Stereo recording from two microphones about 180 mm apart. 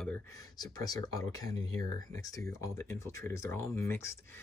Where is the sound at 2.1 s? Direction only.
20° left (ahead or behind).